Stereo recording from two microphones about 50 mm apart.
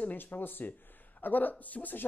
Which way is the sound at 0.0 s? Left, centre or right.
Left.